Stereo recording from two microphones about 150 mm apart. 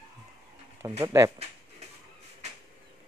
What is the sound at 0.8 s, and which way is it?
Speech, 20° right (ahead or behind).